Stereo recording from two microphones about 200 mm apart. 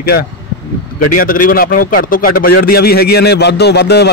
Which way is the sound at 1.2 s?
45° left (ahead or behind).